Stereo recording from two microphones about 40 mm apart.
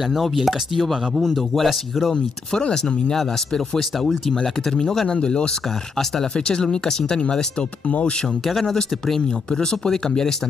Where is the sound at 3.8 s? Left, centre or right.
Centre.